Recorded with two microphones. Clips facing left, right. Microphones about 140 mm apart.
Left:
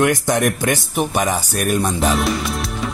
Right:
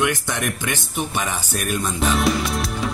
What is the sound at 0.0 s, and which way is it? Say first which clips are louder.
Speech: left 6 dB; 45° left (ahead or behind).